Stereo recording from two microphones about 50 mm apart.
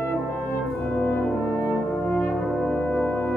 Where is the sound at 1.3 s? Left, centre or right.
Centre.